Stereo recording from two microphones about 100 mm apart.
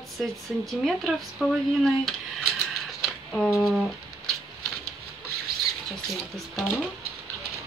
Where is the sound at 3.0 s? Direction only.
Centre (ahead or behind).